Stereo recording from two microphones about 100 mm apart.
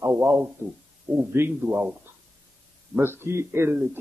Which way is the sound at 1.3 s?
25° right (ahead or behind).